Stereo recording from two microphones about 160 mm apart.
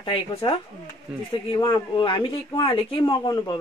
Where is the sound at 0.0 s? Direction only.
35° left (ahead or behind).